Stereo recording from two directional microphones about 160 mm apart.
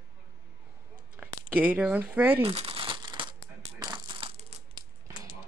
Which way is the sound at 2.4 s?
35° right (ahead or behind).